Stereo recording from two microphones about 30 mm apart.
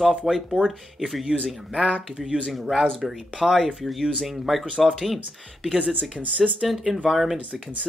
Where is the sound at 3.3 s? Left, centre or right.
Centre.